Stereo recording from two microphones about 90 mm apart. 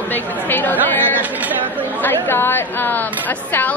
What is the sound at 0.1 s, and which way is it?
Chatter, 20° left (ahead or behind).